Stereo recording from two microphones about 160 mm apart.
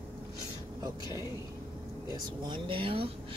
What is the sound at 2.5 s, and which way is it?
Speech, 35° right (ahead or behind).